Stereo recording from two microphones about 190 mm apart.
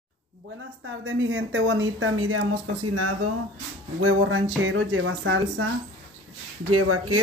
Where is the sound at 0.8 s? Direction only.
90° right.